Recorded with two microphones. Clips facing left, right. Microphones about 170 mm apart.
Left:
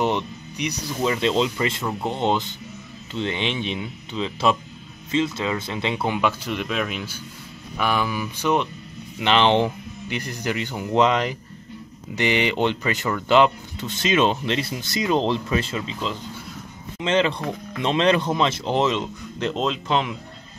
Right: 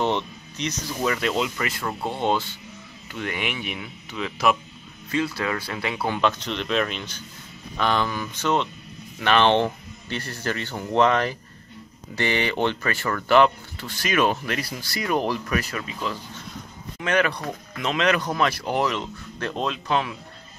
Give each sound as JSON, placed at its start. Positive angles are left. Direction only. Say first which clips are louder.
{"t": 0.0, "sound": "speech", "louder": "left 1 dB", "side_deg": 15}
{"t": 6.1, "sound": "speech", "louder": "left 1 dB", "side_deg": 10}